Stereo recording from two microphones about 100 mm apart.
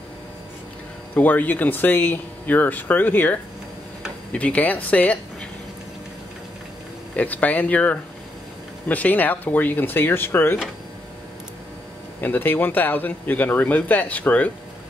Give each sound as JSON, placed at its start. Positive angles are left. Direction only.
{"t": 1.1, "sound": "speech", "side_deg": 15}
{"t": 7.2, "sound": "speech", "side_deg": 15}
{"t": 12.2, "sound": "speech", "side_deg": 20}